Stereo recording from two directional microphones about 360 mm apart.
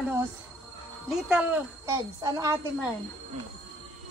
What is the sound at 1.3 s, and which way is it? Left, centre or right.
A woman's voice, centre.